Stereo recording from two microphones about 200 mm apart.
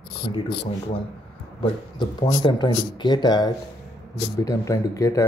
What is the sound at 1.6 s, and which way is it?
A man's voice, 25° left (ahead or behind).